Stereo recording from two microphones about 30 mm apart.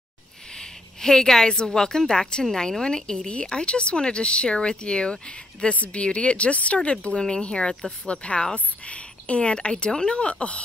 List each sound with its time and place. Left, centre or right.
0.6 s a sound: centre
1.7 s a woman's voice: centre
5.7 s speech: left
6.8 s speech: left